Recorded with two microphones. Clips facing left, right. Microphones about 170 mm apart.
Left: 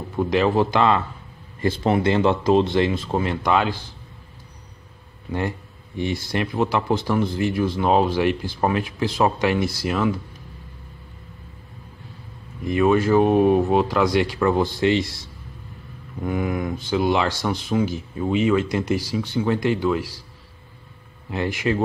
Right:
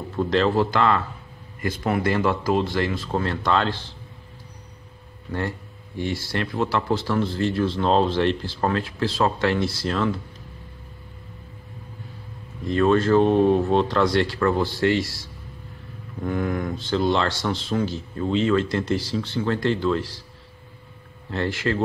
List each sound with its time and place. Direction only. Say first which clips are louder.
0.1 s speech: left 1 dB; 15° left (ahead or behind)
5.9 s speech: left 2 dB; 20° left (ahead or behind)
12.6 s speech: left 1 dB; 10° left (ahead or behind)
16.2 s speech: left 1 dB; 10° left (ahead or behind)
21.3 s speech: left 1 dB; 15° left (ahead or behind)